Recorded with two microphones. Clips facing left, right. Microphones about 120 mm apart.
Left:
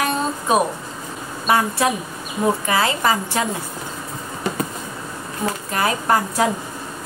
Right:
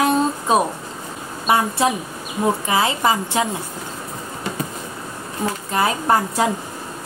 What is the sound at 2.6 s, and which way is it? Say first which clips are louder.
Speech: right 1 dB; 20° right (ahead or behind).